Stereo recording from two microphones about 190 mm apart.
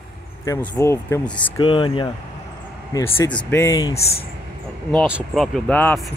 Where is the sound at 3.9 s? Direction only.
30° left (ahead or behind).